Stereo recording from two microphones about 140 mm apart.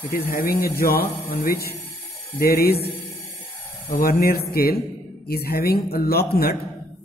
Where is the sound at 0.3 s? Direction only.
90° left.